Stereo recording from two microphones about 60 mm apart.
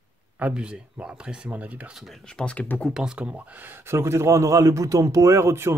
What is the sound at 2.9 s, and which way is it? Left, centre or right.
Speech, centre.